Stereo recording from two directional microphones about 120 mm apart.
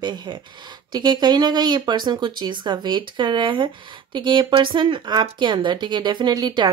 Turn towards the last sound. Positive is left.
turn(degrees=-35)  # may be behind; listen again after turning